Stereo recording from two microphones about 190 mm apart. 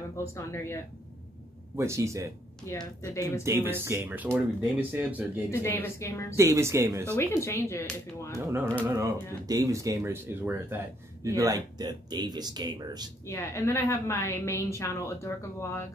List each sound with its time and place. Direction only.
0.3 s a woman's voice: 15° left (ahead or behind)
1.8 s speech: 15° right (ahead or behind)
2.7 s a woman's voice: 15° left (ahead or behind)
3.4 s speech: 10° right (ahead or behind)
5.5 s a woman's voice: 10° left (ahead or behind)
6.3 s speech: 15° right (ahead or behind)
7.2 s a woman's voice: 15° left (ahead or behind)
8.4 s speech: 15° right (ahead or behind)
13.3 s a woman's voice: 15° left (ahead or behind)